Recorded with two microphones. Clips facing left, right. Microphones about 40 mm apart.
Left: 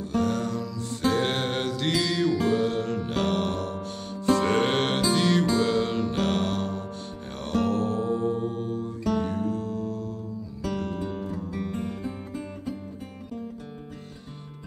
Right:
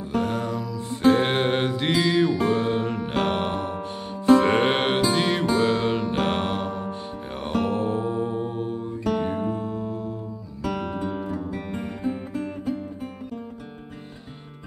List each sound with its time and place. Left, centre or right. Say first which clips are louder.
0.1 s music: right 1 dB; centre